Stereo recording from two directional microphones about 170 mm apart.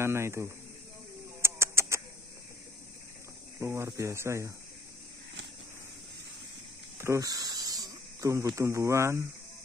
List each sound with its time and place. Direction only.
0.0 s speech: 15° right (ahead or behind)
1.4 s chicken: 15° right (ahead or behind)
3.5 s speech: 15° right (ahead or behind)
7.0 s speech: 20° right (ahead or behind)